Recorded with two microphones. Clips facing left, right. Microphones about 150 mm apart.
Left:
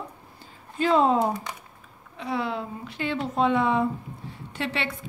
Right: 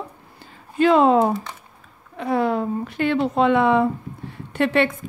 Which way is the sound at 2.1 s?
50° right (ahead or behind).